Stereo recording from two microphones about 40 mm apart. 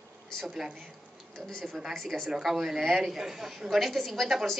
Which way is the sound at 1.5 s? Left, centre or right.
Centre.